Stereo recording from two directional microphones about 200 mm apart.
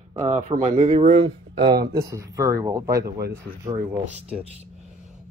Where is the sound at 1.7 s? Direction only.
50° right (ahead or behind).